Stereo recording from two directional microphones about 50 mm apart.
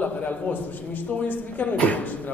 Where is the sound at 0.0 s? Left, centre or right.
Left.